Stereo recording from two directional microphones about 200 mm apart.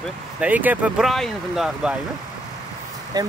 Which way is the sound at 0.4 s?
10° right (ahead or behind).